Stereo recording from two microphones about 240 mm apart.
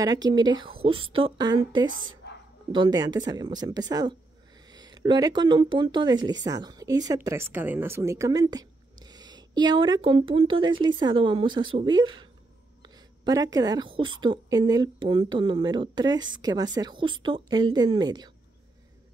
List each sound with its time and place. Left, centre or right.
0.0 s speech: centre
2.2 s a sound: left
2.7 s speech: centre